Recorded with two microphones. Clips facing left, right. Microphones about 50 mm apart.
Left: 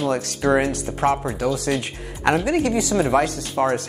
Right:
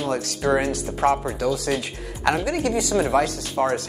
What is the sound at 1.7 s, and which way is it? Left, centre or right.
Speech, left.